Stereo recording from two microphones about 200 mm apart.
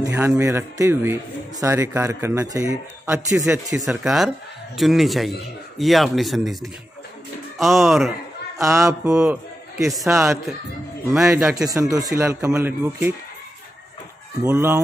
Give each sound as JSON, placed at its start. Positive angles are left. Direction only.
{"t": 0.0, "sound": "a man's voice", "side_deg": -10}
{"t": 3.7, "sound": "speech", "side_deg": -5}
{"t": 8.5, "sound": "a man's voice", "side_deg": -15}
{"t": 9.1, "sound": "a man's voice", "side_deg": -5}
{"t": 11.1, "sound": "speech", "side_deg": -5}
{"t": 11.9, "sound": "a man's voice", "side_deg": -15}
{"t": 14.4, "sound": "a man's voice", "side_deg": -10}